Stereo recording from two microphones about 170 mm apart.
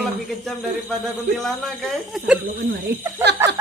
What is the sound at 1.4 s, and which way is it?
Speech, centre (ahead or behind).